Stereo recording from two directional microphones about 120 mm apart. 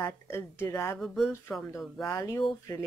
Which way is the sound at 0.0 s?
20° left (ahead or behind).